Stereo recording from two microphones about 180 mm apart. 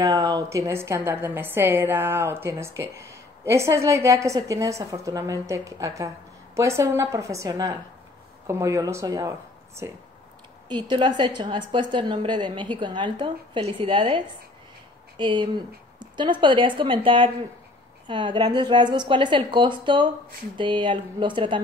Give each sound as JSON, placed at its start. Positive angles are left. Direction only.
{"t": 0.0, "sound": "a woman's voice", "side_deg": -20}